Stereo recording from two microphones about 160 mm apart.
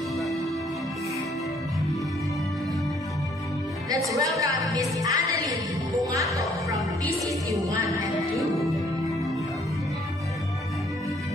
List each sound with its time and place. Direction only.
4.2 s music: 20° right (ahead or behind)
6.1 s speech: 20° right (ahead or behind)
7.2 s music: 20° right (ahead or behind)
8.4 s music: centre (ahead or behind)